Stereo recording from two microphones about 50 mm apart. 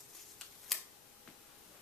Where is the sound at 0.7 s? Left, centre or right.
Centre.